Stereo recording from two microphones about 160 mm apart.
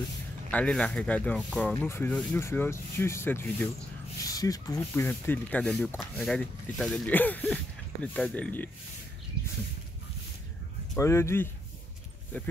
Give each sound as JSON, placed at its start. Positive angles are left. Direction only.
{"t": 0.5, "sound": "speech", "side_deg": 5}
{"t": 11.0, "sound": "speech", "side_deg": 15}